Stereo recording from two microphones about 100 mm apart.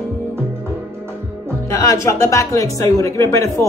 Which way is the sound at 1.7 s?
30° left (ahead or behind).